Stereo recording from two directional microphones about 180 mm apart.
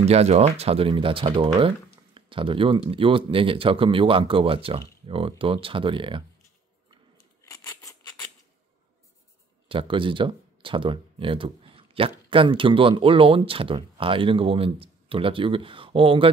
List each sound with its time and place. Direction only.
0.0 s speech: 35° right (ahead or behind)
7.4 s scissors: 20° left (ahead or behind)
9.7 s speech: 30° right (ahead or behind)